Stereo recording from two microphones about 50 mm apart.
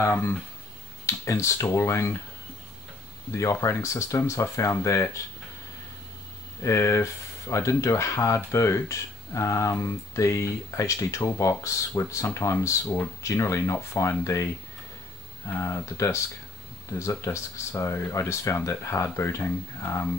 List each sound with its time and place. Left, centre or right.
1.0 s speech: left
3.6 s speech: left
6.6 s speech: left
12.4 s speech: left
19.1 s speech: left